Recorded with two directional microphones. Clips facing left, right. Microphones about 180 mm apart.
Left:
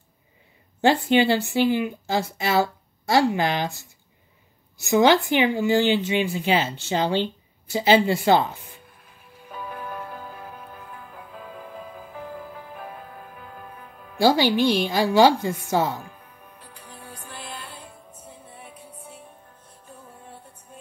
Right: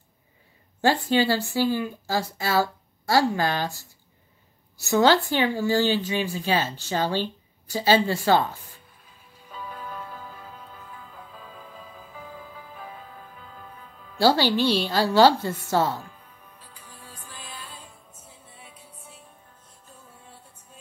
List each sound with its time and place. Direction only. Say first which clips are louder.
1.0 s speech: left 3 dB; 20° left (ahead or behind)
4.8 s speech: left 2 dB; 15° left (ahead or behind)
9.0 s music: left 4 dB; 55° left (ahead or behind)
14.1 s a woman's voice: left 2 dB; 15° left (ahead or behind)
17.0 s music: left 5 dB; 70° left (ahead or behind)
20.7 s music: left 7 dB; 55° left (ahead or behind)